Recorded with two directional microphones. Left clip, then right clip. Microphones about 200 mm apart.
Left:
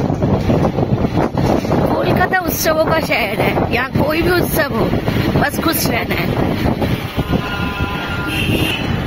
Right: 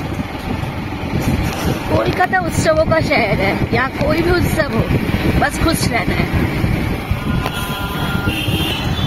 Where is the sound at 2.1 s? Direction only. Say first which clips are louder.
Even; 20° left (ahead or behind).